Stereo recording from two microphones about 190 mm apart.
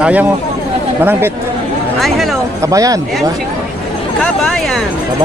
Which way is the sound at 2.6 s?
20° right (ahead or behind).